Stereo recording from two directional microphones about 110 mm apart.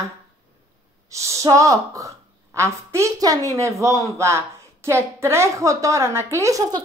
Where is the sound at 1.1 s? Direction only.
25° right (ahead or behind).